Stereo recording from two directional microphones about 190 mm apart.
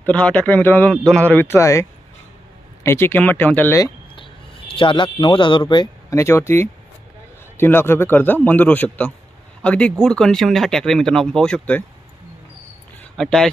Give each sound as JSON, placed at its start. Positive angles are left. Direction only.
{"t": 0.0, "sound": "speech", "side_deg": 5}
{"t": 4.1, "sound": "speech", "side_deg": 25}
{"t": 13.2, "sound": "speech", "side_deg": 5}